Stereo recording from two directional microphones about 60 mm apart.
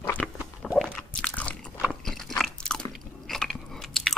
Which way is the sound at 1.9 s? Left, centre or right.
Centre.